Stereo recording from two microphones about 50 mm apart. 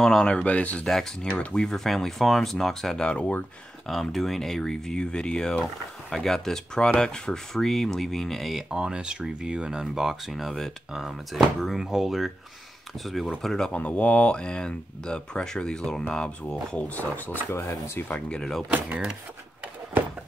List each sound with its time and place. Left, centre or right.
0.0 s speech: centre
0.4 s speech: left
0.8 s speech: centre
1.3 s speech: centre
3.1 s speech: left
3.8 s speech: centre
8.6 s speech: centre
9.9 s speech: centre
13.7 s speech: left
16.7 s speech: left
17.5 s speech: left
18.1 s speech: left